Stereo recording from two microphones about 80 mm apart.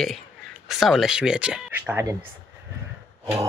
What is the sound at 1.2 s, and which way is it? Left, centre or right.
Speech, centre.